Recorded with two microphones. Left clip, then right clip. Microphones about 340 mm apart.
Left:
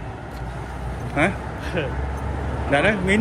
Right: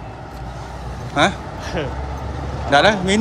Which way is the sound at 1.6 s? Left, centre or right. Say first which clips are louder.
Right 1 dB; right.